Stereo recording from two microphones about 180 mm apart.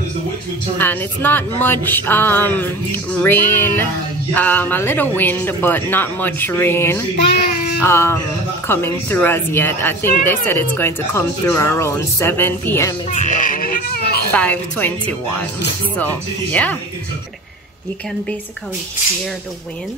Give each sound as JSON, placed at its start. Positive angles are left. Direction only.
{"t": 0.7, "sound": "speech", "side_deg": 10}
{"t": 13.1, "sound": "baby cry", "side_deg": 45}
{"t": 14.3, "sound": "speech", "side_deg": 10}